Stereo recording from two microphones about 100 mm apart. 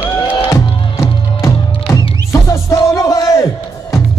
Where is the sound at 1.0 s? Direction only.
35° left (ahead or behind).